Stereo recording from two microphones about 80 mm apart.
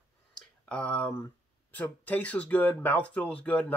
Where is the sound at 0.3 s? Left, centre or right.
Centre.